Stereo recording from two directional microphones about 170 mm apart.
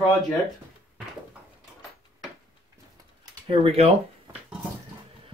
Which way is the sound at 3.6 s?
40° right (ahead or behind).